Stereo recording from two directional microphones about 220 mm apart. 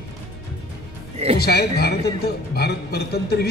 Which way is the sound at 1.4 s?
45° left (ahead or behind).